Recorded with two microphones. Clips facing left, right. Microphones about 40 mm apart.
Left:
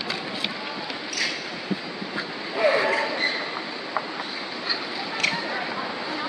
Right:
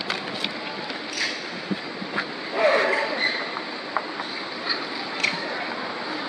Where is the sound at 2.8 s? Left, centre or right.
Centre.